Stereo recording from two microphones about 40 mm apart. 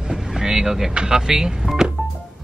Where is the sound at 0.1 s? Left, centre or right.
Centre.